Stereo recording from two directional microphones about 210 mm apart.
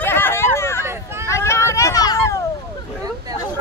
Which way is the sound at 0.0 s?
10° left (ahead or behind).